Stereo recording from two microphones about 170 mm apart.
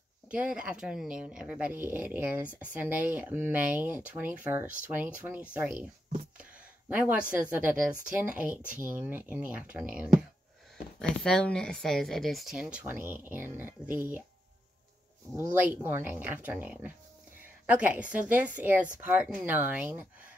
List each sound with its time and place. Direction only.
0.3 s speech: 5° right (ahead or behind)
5.7 s speech: 55° right (ahead or behind)
6.9 s speech: 10° right (ahead or behind)
8.5 s speech: 50° right (ahead or behind)
8.9 s speech: 10° right (ahead or behind)
11.0 s speech: 5° left (ahead or behind); by 13.9 s 10° right (ahead or behind)
15.3 s speech: 10° right (ahead or behind)